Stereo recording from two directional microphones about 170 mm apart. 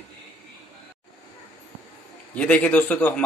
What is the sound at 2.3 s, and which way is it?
Speech, 5° left (ahead or behind).